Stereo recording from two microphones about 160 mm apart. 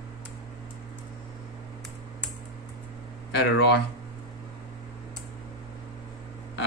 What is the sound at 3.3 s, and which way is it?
Speech, 90° left.